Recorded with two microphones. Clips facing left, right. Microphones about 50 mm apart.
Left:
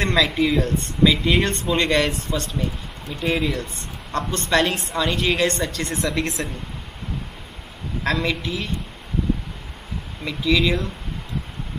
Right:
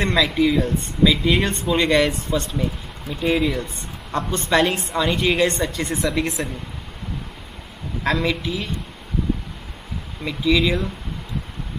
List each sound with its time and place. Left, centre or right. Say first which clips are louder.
0.0 s a woman's voice: right 1 dB; centre
4.1 s a woman's voice: right 1 dB; centre
4.6 s a woman's voice: right 1 dB; centre
8.0 s a woman's voice: right 2 dB; centre
10.2 s a woman's voice: right 1 dB; centre